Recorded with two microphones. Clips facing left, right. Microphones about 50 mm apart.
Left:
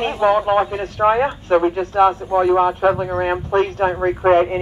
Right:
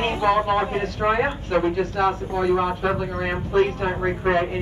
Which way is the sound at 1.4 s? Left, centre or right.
Left.